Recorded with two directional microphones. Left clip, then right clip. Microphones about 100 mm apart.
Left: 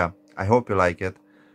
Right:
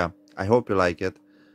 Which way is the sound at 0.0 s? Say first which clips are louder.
Left 2 dB; 35° right (ahead or behind).